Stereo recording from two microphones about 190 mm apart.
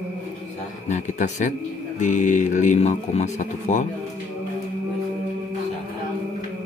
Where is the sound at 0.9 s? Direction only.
40° left (ahead or behind).